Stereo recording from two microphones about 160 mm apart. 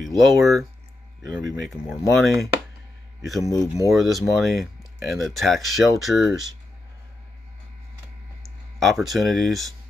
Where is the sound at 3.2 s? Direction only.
Centre (ahead or behind).